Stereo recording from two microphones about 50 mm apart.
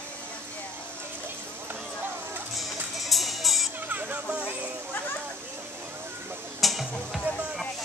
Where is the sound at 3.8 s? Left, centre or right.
Right.